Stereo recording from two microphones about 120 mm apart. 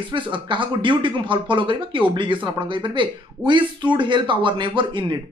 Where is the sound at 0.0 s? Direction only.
45° right (ahead or behind).